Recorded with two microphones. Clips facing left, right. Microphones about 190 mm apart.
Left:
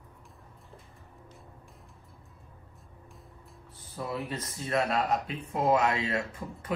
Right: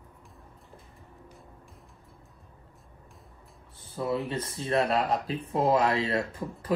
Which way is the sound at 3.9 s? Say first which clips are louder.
Right 5 dB; 25° right (ahead or behind).